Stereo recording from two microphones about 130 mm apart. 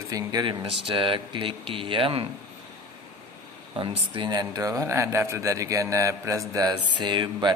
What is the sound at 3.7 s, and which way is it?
Speech, 40° right (ahead or behind).